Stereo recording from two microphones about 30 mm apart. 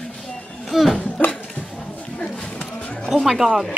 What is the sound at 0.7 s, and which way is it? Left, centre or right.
Speech, centre.